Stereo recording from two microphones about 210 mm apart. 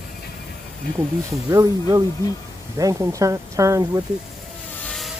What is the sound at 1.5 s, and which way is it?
Speech, 15° right (ahead or behind).